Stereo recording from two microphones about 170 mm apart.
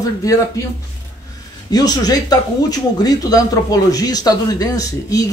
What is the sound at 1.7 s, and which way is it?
Speech, 25° left (ahead or behind).